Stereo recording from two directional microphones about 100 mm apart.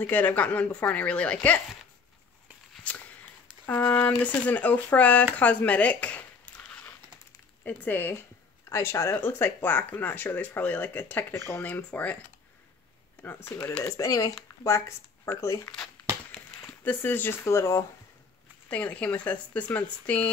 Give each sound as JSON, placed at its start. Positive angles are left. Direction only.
{"t": 0.0, "sound": "speech", "side_deg": 15}
{"t": 2.7, "sound": "a sound", "side_deg": 10}
{"t": 3.6, "sound": "speech", "side_deg": 20}
{"t": 13.2, "sound": "speech", "side_deg": 20}
{"t": 18.7, "sound": "speech", "side_deg": 15}